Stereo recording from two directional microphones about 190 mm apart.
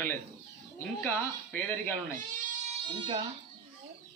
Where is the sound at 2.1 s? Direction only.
45° right (ahead or behind).